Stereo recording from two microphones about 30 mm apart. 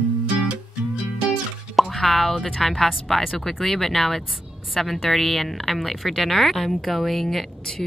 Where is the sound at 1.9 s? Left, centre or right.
Centre.